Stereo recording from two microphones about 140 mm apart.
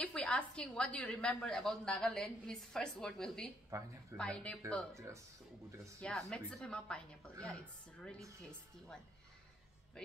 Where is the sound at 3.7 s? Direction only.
20° right (ahead or behind).